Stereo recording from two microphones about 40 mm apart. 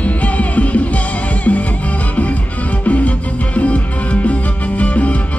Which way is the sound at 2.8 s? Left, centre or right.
Left.